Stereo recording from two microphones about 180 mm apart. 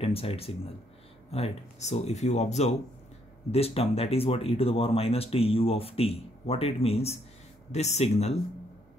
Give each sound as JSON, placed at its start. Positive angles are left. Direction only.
{"t": 0.0, "sound": "speech", "side_deg": 30}